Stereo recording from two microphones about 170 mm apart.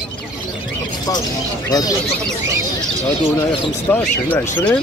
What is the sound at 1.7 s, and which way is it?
Speech, 20° left (ahead or behind).